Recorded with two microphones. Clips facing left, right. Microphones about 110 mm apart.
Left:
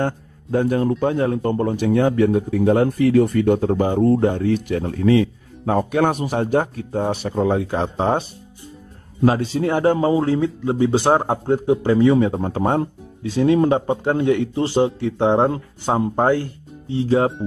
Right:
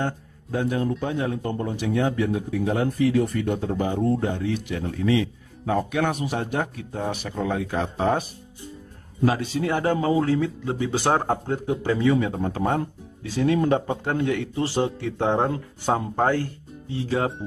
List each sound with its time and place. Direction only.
0.0 s a man's voice: 50° left (ahead or behind); by 11.5 s 25° left (ahead or behind)
11.8 s speech: 35° left (ahead or behind); by 16.4 s 20° left (ahead or behind)
17.4 s a man's voice: 50° left (ahead or behind)